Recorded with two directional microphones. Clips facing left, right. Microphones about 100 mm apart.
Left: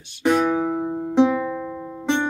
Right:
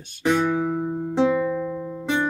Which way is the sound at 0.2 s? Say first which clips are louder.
Left 2 dB; 15° left (ahead or behind).